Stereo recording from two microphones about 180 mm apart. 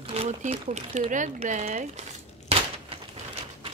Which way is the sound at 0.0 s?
35° right (ahead or behind).